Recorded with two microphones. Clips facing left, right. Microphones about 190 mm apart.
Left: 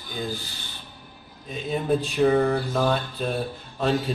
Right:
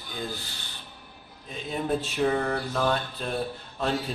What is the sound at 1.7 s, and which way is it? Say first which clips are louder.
A man's voice: left 4 dB; centre (ahead or behind).